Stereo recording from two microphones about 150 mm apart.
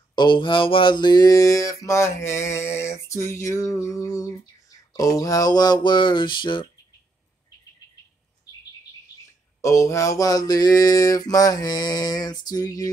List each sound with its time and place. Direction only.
0.1 s mantra: 30° left (ahead or behind)
4.9 s speech: 25° left (ahead or behind)
9.6 s mantra: 20° left (ahead or behind)